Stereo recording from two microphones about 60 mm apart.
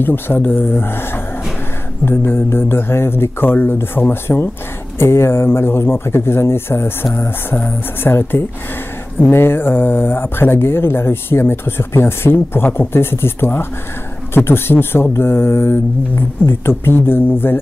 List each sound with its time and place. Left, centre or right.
0.0 s speech: left